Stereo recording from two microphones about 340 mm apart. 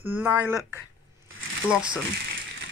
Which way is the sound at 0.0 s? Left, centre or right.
Centre.